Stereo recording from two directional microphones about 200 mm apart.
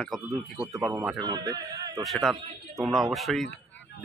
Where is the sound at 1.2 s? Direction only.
20° right (ahead or behind).